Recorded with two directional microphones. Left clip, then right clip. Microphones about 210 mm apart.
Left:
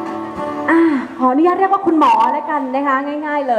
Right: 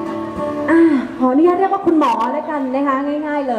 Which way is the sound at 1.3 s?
5° left (ahead or behind).